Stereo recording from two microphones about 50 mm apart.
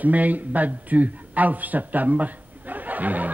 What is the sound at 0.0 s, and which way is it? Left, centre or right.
A man's voice, right.